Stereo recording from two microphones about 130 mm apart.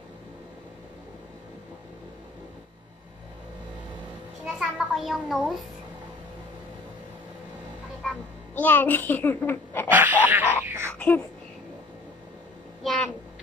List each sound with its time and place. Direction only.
4.6 s a child's voice: 5° right (ahead or behind)
8.5 s a child's voice: 15° left (ahead or behind)
9.8 s speech: 15° right (ahead or behind)
10.6 s a sound: 20° right (ahead or behind)
10.9 s babbling: 10° left (ahead or behind)
12.8 s a sound: 5° left (ahead or behind)